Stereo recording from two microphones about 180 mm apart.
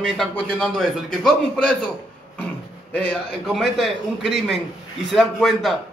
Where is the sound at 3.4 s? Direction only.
Centre (ahead or behind).